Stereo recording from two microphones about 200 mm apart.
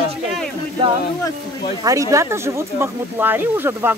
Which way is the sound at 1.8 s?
15° right (ahead or behind).